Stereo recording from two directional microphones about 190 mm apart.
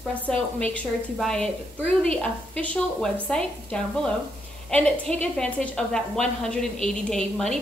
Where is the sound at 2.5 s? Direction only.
5° left (ahead or behind).